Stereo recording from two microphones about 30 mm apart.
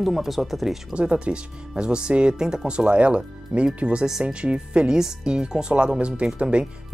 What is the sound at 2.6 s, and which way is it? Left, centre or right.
Speech, right.